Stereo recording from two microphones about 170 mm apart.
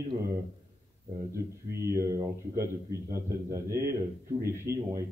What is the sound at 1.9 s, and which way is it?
A man's voice, 20° right (ahead or behind).